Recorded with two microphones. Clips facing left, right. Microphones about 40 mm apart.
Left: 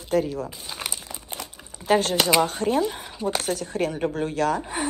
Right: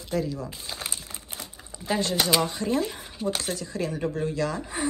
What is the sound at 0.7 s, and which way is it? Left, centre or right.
Crumpling, left.